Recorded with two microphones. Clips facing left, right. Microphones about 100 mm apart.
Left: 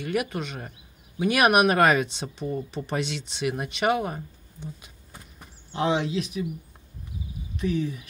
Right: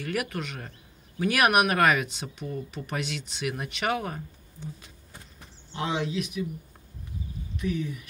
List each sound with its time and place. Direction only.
0.0 s speech: 20° left (ahead or behind)
5.8 s speech: 30° left (ahead or behind)
7.5 s speech: 30° left (ahead or behind)